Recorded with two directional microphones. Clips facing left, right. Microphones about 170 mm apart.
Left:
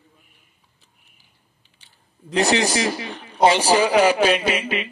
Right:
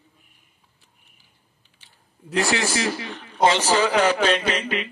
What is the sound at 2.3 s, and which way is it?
A man's voice, 20° left (ahead or behind).